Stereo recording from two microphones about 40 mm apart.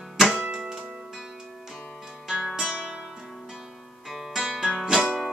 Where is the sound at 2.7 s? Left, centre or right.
Right.